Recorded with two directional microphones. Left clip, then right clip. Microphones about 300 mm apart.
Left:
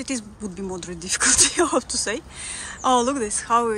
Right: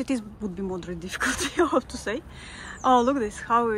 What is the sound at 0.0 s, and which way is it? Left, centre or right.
Speech, centre.